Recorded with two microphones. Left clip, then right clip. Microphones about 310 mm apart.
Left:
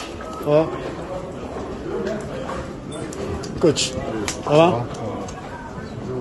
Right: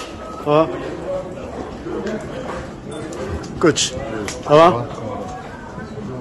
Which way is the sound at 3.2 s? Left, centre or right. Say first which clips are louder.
Right 1 dB; centre.